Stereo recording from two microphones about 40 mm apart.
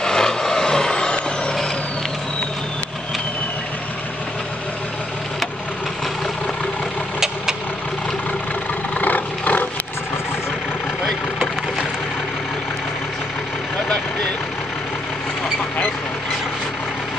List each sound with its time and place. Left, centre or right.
0.0 s vehicle: centre
8.9 s vehicle: left